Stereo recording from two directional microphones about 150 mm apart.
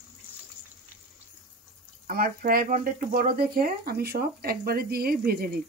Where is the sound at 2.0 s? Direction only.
75° right (ahead or behind); by 5.6 s 90° right.